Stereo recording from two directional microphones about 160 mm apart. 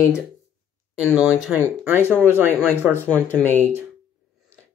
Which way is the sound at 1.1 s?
5° right (ahead or behind).